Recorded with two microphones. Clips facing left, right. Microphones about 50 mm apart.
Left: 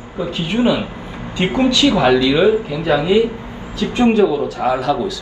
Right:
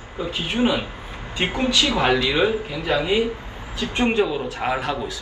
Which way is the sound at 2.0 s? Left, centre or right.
Right.